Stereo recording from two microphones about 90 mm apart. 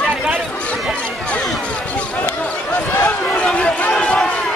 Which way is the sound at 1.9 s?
15° left (ahead or behind).